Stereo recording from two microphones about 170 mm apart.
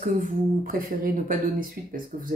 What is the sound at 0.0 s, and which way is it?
Speech, 50° right (ahead or behind).